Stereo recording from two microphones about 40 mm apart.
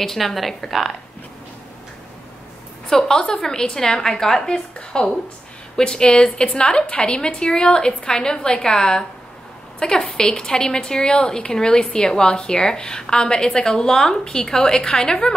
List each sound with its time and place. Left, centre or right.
0.0 s a woman's voice: centre
2.9 s a woman's voice: centre